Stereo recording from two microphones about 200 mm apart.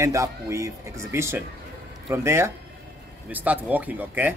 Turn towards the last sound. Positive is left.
turn(degrees=-10)  # may be behind; listen again after turning